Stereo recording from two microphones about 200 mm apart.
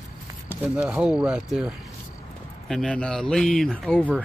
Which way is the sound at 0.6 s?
5° right (ahead or behind).